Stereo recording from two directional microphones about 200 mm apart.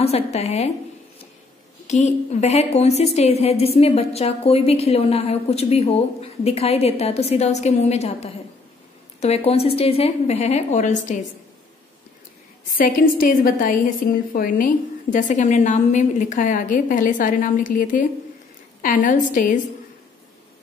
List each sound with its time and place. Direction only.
0.0 s a woman's voice: 30° left (ahead or behind)
1.9 s a woman's voice: 35° left (ahead or behind)
12.7 s a woman's voice: 45° left (ahead or behind)